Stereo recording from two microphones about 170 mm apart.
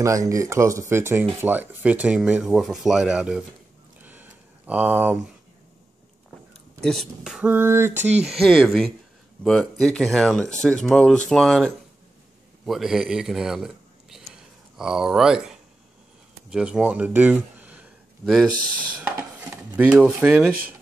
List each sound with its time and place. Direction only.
0.0 s speech: 20° right (ahead or behind)
4.0 s a sound: 10° right (ahead or behind)
6.8 s speech: centre (ahead or behind); by 8.0 s 15° right (ahead or behind)
8.0 s speech: 40° right (ahead or behind)
8.3 s speech: centre (ahead or behind)
14.1 s a sound: 5° right (ahead or behind)
16.4 s speech: 5° right (ahead or behind)
18.2 s speech: centre (ahead or behind)
19.5 s speech: 10° right (ahead or behind)